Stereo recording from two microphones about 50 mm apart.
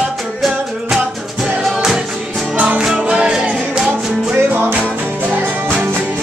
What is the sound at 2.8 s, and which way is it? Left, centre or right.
Music, centre.